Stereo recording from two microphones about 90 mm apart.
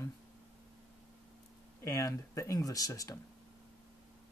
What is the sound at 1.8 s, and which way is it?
Speech, 35° left (ahead or behind).